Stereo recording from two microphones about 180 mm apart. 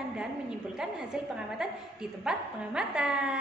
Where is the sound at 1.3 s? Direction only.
5° right (ahead or behind).